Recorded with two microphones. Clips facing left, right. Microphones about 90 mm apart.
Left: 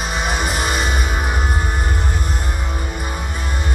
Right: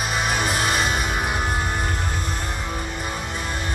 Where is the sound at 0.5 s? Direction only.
15° left (ahead or behind).